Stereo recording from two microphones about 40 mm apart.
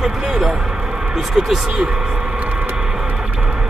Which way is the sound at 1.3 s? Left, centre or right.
Centre.